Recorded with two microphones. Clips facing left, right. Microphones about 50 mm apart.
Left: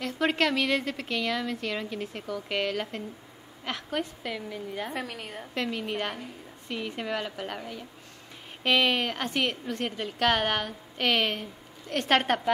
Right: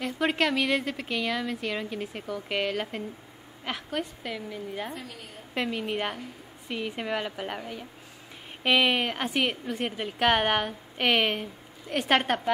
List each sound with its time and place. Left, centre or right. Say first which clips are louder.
0.0 s a woman's voice: even; centre
4.9 s a woman's voice: left 6 dB; left
5.5 s a woman's voice: right 2 dB; centre